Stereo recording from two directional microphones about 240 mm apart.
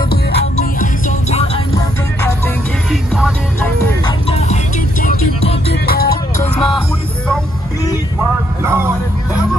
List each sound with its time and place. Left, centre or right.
0.4 s music: left
2.9 s music: centre
4.0 s music: left
6.4 s music: left
8.2 s vehicle: centre